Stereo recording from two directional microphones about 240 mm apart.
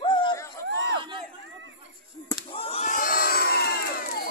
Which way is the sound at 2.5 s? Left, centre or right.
Left.